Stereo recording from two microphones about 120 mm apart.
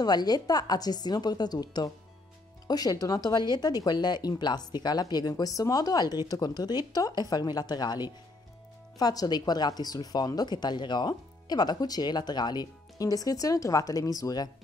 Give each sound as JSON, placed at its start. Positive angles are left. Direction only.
{"t": 0.0, "sound": "speech", "side_deg": 35}